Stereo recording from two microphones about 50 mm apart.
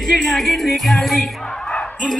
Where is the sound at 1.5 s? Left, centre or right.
Centre.